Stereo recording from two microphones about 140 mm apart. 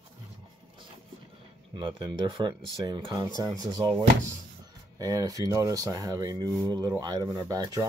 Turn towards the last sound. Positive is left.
turn(degrees=-25)  # may be behind; listen again after turning